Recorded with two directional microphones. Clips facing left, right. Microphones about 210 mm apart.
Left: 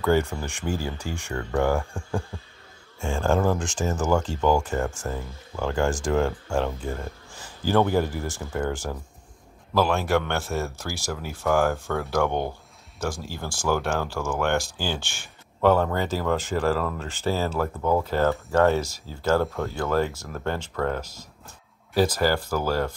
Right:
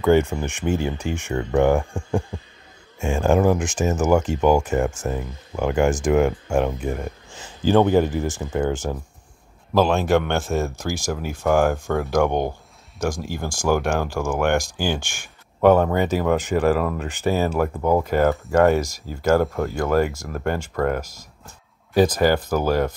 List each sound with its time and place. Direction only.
0.0 s speech: 20° right (ahead or behind)